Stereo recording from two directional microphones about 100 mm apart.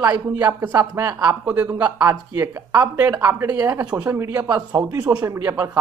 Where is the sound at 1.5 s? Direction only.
20° right (ahead or behind).